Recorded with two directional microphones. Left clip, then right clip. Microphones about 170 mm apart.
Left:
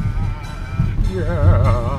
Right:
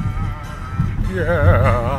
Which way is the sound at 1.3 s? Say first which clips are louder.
Right 6 dB; 25° right (ahead or behind).